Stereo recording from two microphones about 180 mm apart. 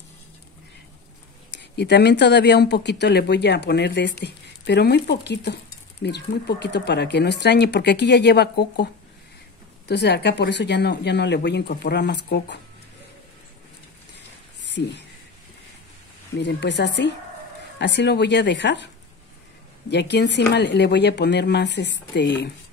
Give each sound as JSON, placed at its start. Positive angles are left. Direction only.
{"t": 1.6, "sound": "speech", "side_deg": 70}
{"t": 9.8, "sound": "speech", "side_deg": 70}
{"t": 14.7, "sound": "speech", "side_deg": 70}
{"t": 16.3, "sound": "speech", "side_deg": 75}
{"t": 19.9, "sound": "speech", "side_deg": 70}